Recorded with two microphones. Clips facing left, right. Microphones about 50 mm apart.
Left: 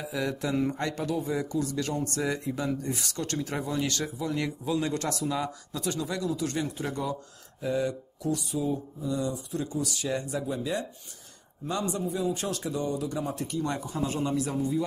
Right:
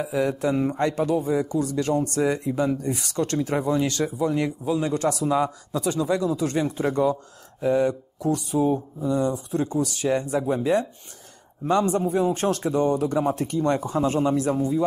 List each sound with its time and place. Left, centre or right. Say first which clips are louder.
0.0 s speech: right 7 dB; right
4.6 s speech: right 5 dB; centre